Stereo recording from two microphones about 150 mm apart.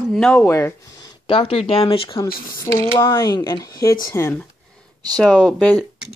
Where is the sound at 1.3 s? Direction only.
40° left (ahead or behind).